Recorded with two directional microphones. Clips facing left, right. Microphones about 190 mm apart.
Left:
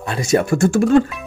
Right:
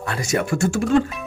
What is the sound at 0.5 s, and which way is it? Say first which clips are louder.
Speech: left 4 dB; 45° left (ahead or behind).